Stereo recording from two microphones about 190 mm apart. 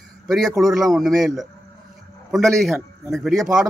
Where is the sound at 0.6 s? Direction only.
Centre (ahead or behind).